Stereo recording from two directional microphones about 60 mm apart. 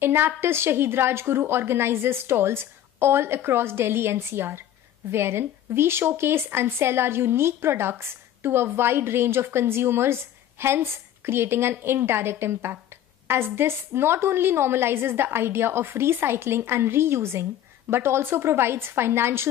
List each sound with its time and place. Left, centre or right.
0.0 s speech: right